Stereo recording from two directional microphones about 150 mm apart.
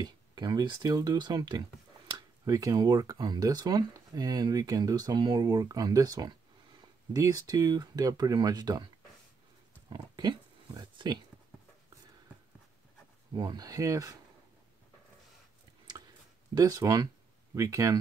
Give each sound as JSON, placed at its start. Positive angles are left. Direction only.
{"t": 0.0, "sound": "speech", "side_deg": -30}
{"t": 9.8, "sound": "pig", "side_deg": -25}
{"t": 13.3, "sound": "speech", "side_deg": -25}
{"t": 16.5, "sound": "speech", "side_deg": -25}